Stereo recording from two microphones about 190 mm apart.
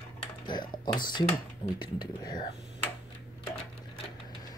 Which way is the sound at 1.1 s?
25° left (ahead or behind).